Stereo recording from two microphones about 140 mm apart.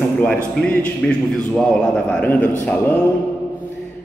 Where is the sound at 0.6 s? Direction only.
10° left (ahead or behind).